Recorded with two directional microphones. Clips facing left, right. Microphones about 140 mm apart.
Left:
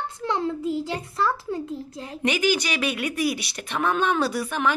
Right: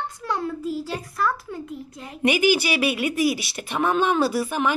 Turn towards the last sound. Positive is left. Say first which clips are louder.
# right 2 dB
turn(degrees=-5)  # may be behind; listen again after turning